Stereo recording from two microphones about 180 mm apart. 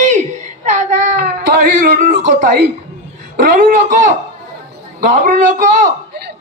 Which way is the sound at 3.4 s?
45° right (ahead or behind).